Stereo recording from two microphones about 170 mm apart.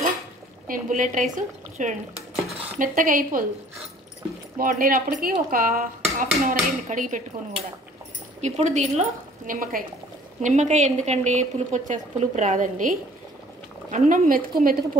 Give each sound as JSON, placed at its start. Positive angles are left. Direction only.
{"t": 0.7, "sound": "speech", "side_deg": -50}
{"t": 4.6, "sound": "speech", "side_deg": -55}
{"t": 9.5, "sound": "a woman's voice", "side_deg": -55}
{"t": 10.4, "sound": "speech", "side_deg": -45}